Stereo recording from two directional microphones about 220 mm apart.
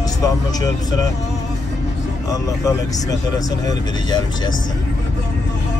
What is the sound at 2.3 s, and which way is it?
Speech, 15° left (ahead or behind).